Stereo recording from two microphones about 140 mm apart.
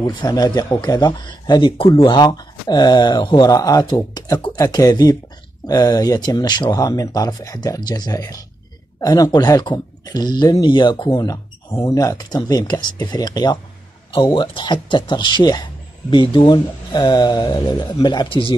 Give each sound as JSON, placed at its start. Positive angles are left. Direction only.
{"t": 0.0, "sound": "speech", "side_deg": 30}
{"t": 11.1, "sound": "speech", "side_deg": 25}